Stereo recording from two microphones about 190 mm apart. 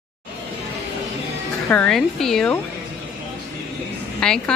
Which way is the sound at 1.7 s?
5° left (ahead or behind).